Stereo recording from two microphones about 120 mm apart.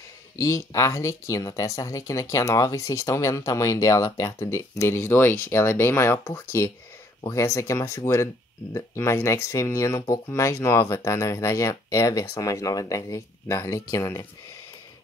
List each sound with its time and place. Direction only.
0.4 s speech: 25° left (ahead or behind)